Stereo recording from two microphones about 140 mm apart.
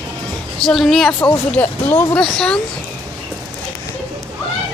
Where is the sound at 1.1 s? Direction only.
20° left (ahead or behind).